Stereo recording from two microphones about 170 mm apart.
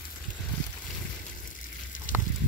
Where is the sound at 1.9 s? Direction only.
50° left (ahead or behind).